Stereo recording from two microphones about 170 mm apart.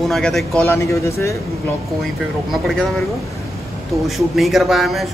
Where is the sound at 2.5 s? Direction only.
Centre (ahead or behind).